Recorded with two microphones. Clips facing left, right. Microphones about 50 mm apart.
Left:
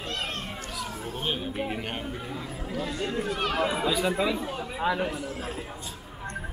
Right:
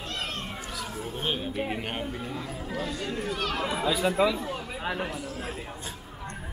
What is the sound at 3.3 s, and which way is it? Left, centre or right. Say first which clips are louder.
Speech: left 3 dB; left.